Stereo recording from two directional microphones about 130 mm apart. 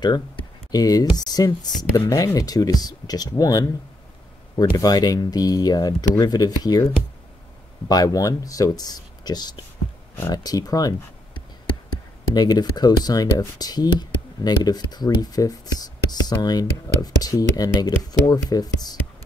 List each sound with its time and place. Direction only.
0.0 s speech: 35° left (ahead or behind)
7.9 s speech: 30° left (ahead or behind)
12.4 s speech: 30° left (ahead or behind)